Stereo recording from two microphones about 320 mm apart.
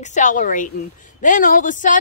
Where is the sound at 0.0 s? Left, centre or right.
Left.